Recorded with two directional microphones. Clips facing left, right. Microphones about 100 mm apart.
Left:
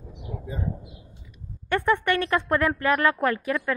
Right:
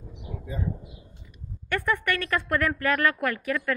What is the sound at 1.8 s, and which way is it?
A woman's voice, 25° left (ahead or behind).